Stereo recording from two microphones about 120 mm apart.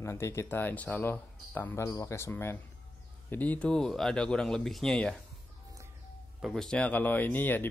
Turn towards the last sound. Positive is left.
turn(degrees=15)  # may be behind; listen again after turning